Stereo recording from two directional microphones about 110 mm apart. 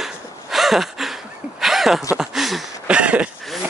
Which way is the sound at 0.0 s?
Centre (ahead or behind).